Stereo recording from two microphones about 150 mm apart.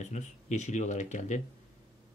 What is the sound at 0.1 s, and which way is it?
Speech, 50° left (ahead or behind).